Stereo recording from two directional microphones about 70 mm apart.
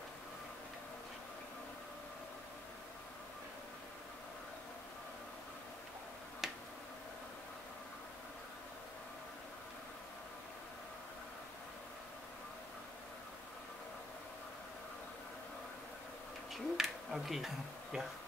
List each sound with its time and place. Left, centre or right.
6.4 s tick-tock: centre
16.5 s speech: centre